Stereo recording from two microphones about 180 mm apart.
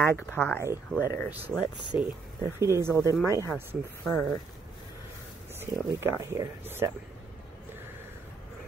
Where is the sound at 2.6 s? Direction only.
15° right (ahead or behind).